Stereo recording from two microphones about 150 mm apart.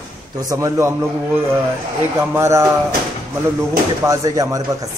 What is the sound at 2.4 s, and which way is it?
Speech, 20° right (ahead or behind).